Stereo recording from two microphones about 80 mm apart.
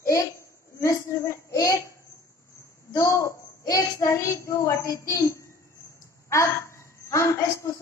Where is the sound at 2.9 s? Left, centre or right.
Left.